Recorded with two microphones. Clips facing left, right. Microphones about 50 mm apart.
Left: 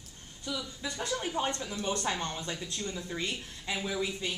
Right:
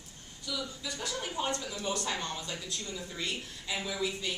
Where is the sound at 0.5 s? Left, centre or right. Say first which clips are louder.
Left 1 dB; left.